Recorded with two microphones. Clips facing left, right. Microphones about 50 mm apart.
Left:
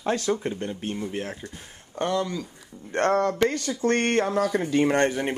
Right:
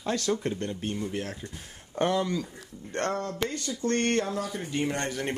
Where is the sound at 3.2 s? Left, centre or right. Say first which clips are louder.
Left 9 dB; left.